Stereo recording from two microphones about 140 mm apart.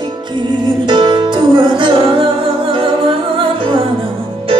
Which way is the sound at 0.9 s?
30° right (ahead or behind).